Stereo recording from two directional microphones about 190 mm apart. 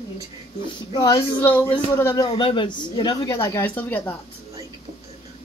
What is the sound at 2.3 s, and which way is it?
A woman's voice, 25° left (ahead or behind).